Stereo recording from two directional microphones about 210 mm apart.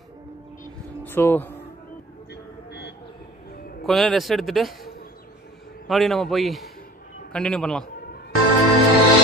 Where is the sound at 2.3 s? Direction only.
55° left (ahead or behind).